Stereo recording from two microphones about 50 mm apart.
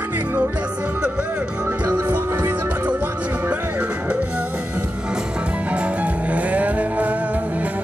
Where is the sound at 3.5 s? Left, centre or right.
Right.